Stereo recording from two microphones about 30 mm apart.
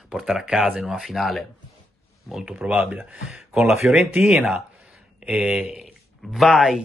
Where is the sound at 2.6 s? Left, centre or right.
Right.